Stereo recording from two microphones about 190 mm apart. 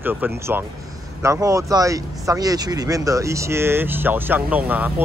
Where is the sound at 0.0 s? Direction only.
10° right (ahead or behind).